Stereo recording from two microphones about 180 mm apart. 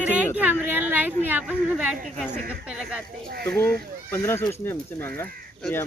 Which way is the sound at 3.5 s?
10° left (ahead or behind).